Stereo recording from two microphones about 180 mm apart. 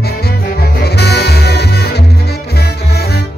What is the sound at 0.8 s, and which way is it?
Music, 65° left (ahead or behind).